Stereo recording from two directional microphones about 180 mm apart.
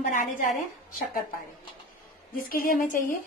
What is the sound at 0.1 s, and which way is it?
Speech, 50° left (ahead or behind).